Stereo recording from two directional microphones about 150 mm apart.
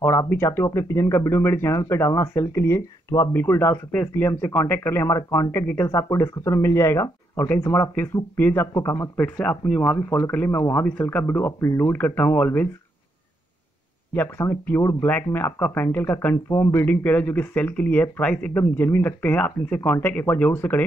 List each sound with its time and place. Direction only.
0.0 s speech: 15° left (ahead or behind)
9.8 s speech: 15° left (ahead or behind)
14.1 s speech: 15° left (ahead or behind)